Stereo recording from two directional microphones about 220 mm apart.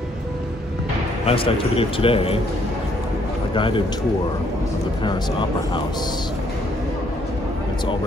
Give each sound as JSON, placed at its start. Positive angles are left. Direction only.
{"t": 1.2, "sound": "a man's voice", "side_deg": 25}
{"t": 3.5, "sound": "a man's voice", "side_deg": 20}